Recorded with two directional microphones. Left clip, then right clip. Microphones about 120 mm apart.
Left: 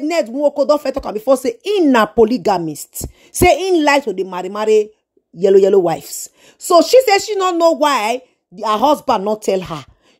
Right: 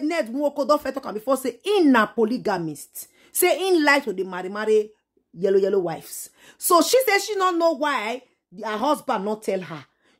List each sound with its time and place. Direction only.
0.4 s a woman's voice: 25° left (ahead or behind)
1.9 s speech: 45° left (ahead or behind)
3.3 s a woman's voice: 30° left (ahead or behind)
5.4 s speech: 50° left (ahead or behind)
6.4 s a woman's voice: 15° left (ahead or behind)
7.1 s a woman's voice: 30° left (ahead or behind)
7.4 s speech: 50° left (ahead or behind)